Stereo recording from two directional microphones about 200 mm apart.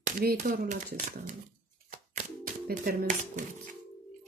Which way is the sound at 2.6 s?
45° right (ahead or behind).